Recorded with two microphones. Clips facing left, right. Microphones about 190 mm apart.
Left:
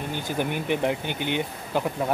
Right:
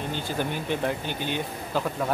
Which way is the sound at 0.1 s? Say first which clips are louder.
Left 3 dB; 15° left (ahead or behind).